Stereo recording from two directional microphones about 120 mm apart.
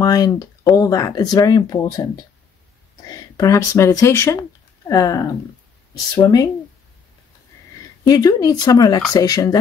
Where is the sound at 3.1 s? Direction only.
30° left (ahead or behind).